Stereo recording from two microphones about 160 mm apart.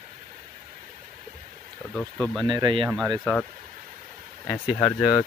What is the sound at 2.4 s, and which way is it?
Speech, 30° right (ahead or behind).